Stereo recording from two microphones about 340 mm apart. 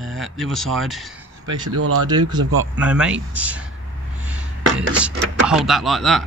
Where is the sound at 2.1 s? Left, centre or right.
Centre.